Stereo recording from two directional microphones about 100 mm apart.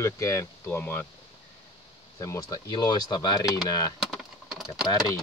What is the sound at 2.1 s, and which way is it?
Speech, 30° left (ahead or behind).